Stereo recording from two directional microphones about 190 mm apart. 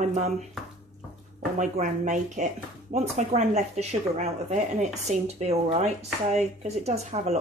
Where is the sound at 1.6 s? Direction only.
40° right (ahead or behind).